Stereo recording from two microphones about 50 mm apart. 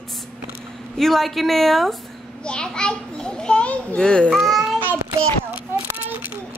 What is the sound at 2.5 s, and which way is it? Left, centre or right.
A child's voice, centre.